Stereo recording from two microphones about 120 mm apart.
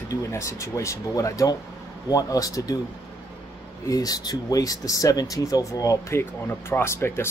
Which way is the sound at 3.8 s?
30° left (ahead or behind).